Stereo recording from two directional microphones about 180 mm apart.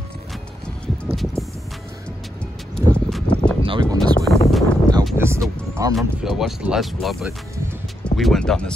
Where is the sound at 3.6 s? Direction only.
25° right (ahead or behind).